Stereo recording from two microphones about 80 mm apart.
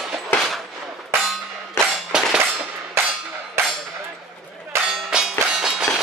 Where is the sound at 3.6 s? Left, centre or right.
Right.